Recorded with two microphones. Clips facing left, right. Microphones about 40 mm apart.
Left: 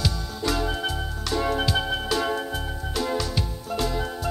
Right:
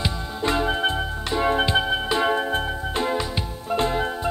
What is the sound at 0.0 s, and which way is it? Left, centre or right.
Music, right.